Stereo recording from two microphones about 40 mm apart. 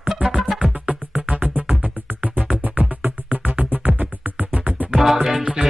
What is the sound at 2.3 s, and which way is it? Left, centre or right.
Music, right.